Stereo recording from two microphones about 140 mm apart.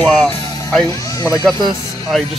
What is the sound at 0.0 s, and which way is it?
Music, 10° left (ahead or behind).